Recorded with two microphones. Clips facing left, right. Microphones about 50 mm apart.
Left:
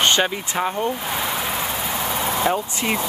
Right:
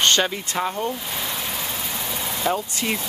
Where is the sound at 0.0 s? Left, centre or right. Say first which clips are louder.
Left 1 dB; centre.